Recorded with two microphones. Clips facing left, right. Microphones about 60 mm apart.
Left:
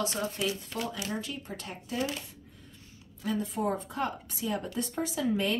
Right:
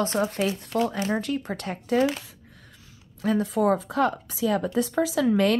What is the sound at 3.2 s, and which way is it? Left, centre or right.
Speech, right.